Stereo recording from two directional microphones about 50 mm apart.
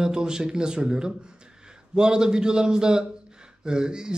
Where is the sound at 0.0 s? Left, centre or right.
Centre.